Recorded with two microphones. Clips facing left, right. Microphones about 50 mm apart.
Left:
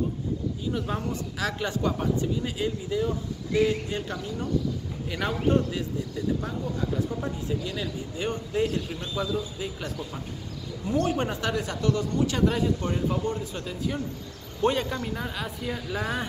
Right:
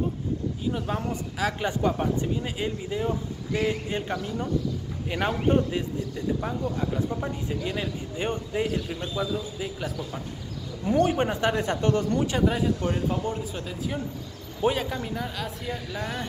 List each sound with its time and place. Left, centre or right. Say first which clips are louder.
0.7 s speech: right 1 dB; centre
7.2 s speech: even; right
8.6 s a man's voice: right 1 dB; centre
10.9 s speech: right 3 dB; right
12.3 s speech: even; centre
15.1 s a man's voice: even; centre